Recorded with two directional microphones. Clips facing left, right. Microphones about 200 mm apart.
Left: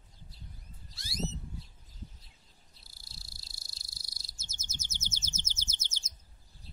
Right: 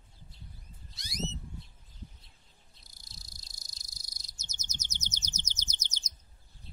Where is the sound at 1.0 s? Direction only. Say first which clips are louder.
Left 1 dB; 20° right (ahead or behind).